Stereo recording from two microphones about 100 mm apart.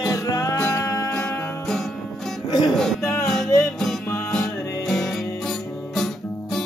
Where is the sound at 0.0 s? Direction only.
35° left (ahead or behind).